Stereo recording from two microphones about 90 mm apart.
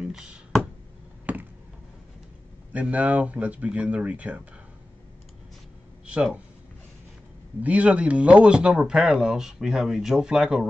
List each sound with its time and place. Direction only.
0.0 s a sound: 10° right (ahead or behind)
2.7 s speech: 15° right (ahead or behind)
6.0 s speech: 10° right (ahead or behind)
7.6 s speech: 15° right (ahead or behind)